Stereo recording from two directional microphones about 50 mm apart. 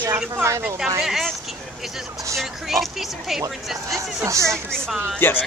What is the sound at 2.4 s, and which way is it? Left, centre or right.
Speech, centre.